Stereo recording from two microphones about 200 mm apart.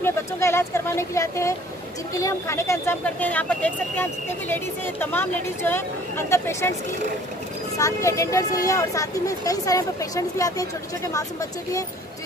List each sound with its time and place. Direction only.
0.0 s speech: 15° left (ahead or behind)
7.7 s speech: 15° left (ahead or behind)